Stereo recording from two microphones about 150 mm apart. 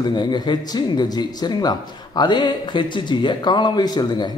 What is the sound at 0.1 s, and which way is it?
A man's voice, 30° left (ahead or behind).